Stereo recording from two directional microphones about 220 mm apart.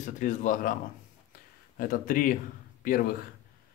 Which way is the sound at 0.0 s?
35° left (ahead or behind).